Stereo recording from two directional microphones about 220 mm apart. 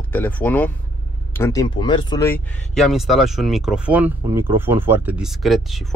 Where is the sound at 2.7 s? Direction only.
Centre (ahead or behind).